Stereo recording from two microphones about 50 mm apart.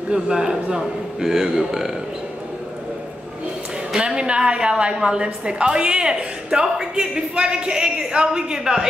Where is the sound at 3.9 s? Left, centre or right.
Centre.